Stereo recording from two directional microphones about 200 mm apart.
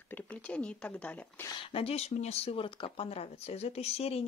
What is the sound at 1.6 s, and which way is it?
Speech, 30° left (ahead or behind).